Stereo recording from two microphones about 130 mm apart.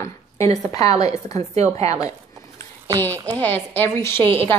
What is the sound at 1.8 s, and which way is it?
Speech, 25° left (ahead or behind).